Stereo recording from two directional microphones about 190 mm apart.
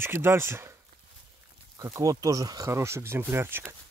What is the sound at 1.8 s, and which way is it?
Speech, 20° right (ahead or behind).